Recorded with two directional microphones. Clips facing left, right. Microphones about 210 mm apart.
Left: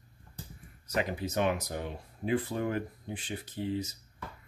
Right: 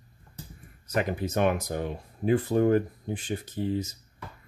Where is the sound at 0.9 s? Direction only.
55° right (ahead or behind).